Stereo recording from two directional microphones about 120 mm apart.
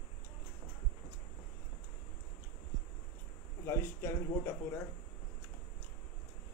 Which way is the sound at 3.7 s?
20° left (ahead or behind).